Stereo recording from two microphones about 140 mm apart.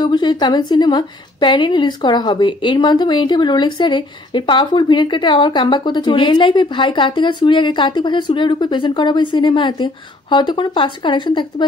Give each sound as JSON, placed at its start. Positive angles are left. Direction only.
{"t": 0.0, "sound": "a woman's voice", "side_deg": 30}